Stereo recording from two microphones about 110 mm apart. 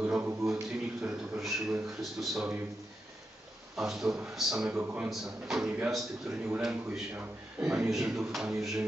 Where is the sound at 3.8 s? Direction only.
5° right (ahead or behind).